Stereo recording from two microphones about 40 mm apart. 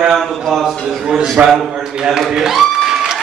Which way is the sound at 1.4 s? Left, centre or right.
Right.